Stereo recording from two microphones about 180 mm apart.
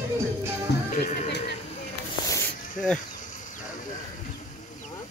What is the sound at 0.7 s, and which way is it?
Music, 65° left (ahead or behind).